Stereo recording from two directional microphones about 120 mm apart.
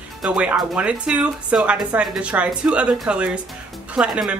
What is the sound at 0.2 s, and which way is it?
Speech, 5° right (ahead or behind).